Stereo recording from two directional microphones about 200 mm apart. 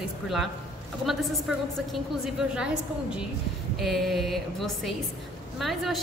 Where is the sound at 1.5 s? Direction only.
Centre (ahead or behind).